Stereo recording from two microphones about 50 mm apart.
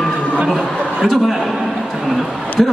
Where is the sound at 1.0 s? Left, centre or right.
Centre.